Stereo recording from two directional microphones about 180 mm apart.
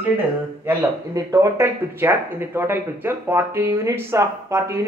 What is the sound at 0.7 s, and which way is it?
Speech, 15° right (ahead or behind).